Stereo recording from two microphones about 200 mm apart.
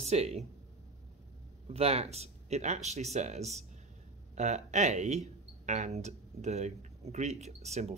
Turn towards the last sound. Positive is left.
turn(degrees=-35)  # may be behind; listen again after turning